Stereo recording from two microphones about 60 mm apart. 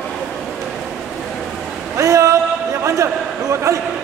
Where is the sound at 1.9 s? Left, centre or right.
Right.